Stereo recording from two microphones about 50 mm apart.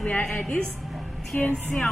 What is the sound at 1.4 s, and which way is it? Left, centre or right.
Speech, left.